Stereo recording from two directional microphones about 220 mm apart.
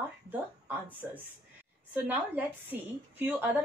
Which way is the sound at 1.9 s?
10° right (ahead or behind).